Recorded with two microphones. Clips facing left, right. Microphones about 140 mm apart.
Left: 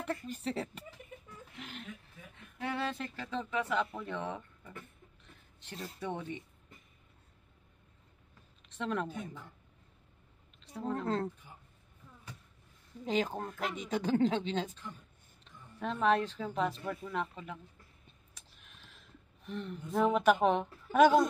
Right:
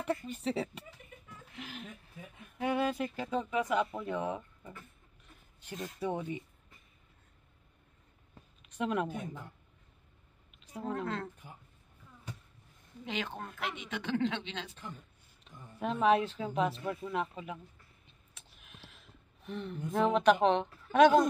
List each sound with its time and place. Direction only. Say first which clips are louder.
0.0 s speech: right 3 dB; centre (ahead or behind)
2.3 s speech: right 5 dB; 15° right (ahead or behind)
5.6 s speech: right 4 dB; 10° right (ahead or behind)
8.6 s speech: right 3 dB; 10° right (ahead or behind)
10.6 s a woman's voice: even; 10° right (ahead or behind)
13.0 s speech: left 6 dB; 40° left (ahead or behind)
15.4 s a sound: right 2 dB; 5° right (ahead or behind)
16.3 s speech: right 2 dB; 5° right (ahead or behind)
18.3 s a sound: right 6 dB; centre (ahead or behind)
20.4 s speech: right 1 dB; 5° left (ahead or behind)